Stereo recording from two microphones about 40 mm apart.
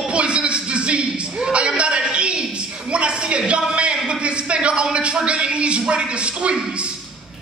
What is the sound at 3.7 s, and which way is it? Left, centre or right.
A man's voice, right.